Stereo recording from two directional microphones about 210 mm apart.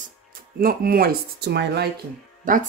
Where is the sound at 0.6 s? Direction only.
45° right (ahead or behind).